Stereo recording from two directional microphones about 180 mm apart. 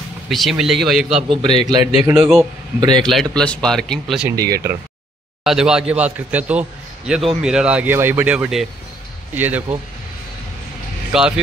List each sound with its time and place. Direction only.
0.3 s speech: centre (ahead or behind)
1.1 s speech: 25° right (ahead or behind)
1.8 s speech: 35° left (ahead or behind)
3.0 s speech: centre (ahead or behind)
4.4 s speech: 20° right (ahead or behind)
5.4 s speech: 5° right (ahead or behind)
11.1 s speech: 5° right (ahead or behind)